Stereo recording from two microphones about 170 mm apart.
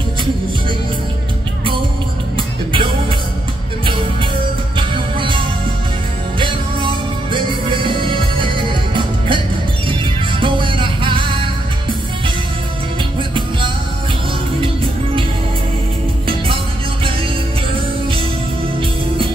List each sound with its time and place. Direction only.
2.3 s music: 30° right (ahead or behind)
6.4 s music: 30° right (ahead or behind)
10.4 s music: 30° right (ahead or behind)